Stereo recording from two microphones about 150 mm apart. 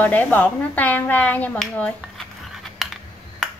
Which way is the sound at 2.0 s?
Centre (ahead or behind).